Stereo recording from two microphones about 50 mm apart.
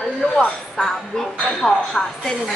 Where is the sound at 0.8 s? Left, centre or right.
Centre.